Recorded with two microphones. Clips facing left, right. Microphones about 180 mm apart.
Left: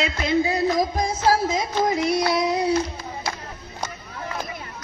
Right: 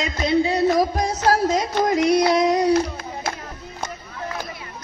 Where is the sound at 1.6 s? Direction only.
80° right.